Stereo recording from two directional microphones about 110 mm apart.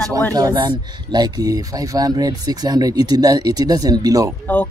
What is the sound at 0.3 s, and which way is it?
Speech, 35° right (ahead or behind).